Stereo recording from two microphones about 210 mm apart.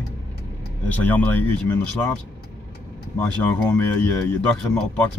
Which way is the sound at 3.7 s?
10° left (ahead or behind).